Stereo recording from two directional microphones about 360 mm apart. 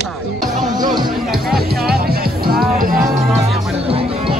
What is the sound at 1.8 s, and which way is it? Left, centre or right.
Music, right.